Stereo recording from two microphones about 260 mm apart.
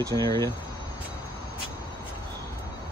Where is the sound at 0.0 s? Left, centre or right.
Centre.